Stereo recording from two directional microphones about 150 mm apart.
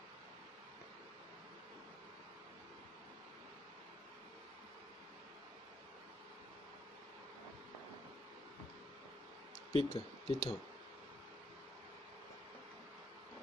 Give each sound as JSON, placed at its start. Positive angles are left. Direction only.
{"t": 9.7, "sound": "speech", "side_deg": 40}